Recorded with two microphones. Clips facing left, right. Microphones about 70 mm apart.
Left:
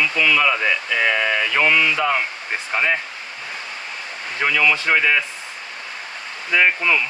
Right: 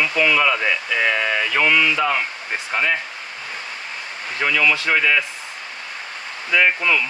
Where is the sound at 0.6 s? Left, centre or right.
Centre.